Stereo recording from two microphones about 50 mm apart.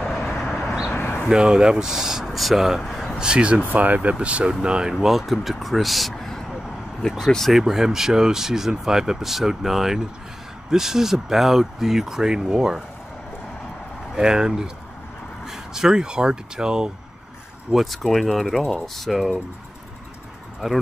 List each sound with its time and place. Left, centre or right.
0.4 s a sound: centre
1.3 s speech: centre
2.9 s a sound: centre
3.2 s speech: centre
3.7 s speech: right
4.9 s speech: centre
7.5 s speech: centre
14.1 s speech: centre
17.7 s speech: centre